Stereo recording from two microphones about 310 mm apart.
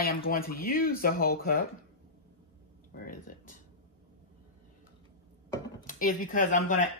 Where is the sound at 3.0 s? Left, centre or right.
Left.